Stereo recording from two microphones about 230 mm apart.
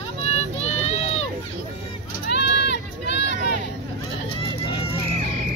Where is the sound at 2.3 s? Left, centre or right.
Left.